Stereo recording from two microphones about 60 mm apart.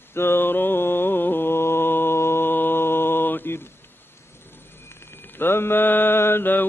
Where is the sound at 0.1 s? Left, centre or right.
Left.